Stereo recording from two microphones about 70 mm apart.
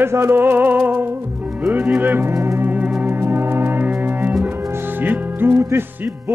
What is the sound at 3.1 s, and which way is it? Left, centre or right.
Music, right.